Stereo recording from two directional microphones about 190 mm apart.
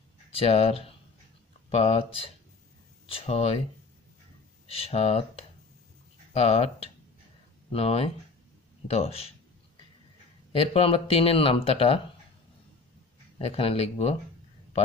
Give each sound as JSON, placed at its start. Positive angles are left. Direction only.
{"t": 0.3, "sound": "speech", "side_deg": 30}
{"t": 4.6, "sound": "speech", "side_deg": 30}
{"t": 10.5, "sound": "speech", "side_deg": 30}
{"t": 13.4, "sound": "speech", "side_deg": 30}